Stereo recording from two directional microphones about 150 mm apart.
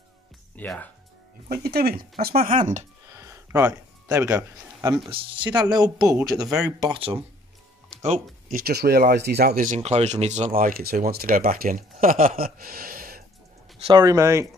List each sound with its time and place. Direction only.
0.6 s speech: 10° left (ahead or behind)
1.5 s speech: 90° right
2.2 s speech: 75° right (ahead or behind)
3.1 s a sound: 20° right (ahead or behind)
5.5 s speech: 25° right (ahead or behind)
6.8 s speech: 35° right (ahead or behind)
8.0 s speech: 50° right (ahead or behind)
8.5 s speech: 90° right
9.8 s speech: 45° right (ahead or behind)
10.5 s speech: 75° right (ahead or behind)
14.0 s speech: 20° right (ahead or behind)